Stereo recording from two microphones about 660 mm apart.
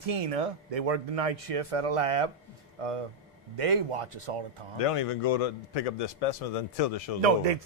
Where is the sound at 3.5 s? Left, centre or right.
Right.